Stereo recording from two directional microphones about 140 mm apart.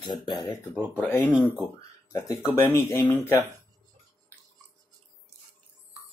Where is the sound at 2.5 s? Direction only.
20° left (ahead or behind).